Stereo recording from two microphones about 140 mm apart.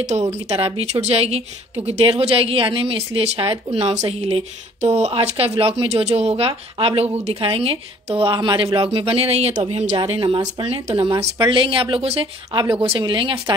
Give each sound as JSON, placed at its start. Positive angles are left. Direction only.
{"t": 0.3, "sound": "a woman's voice", "side_deg": -45}